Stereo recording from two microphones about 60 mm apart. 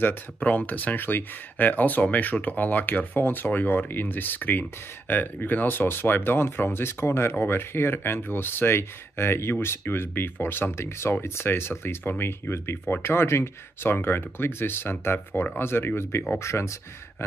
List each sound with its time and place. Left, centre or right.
0.0 s speech: left